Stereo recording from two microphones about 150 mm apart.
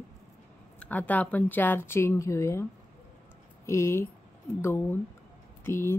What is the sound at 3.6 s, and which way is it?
Speech, 20° left (ahead or behind).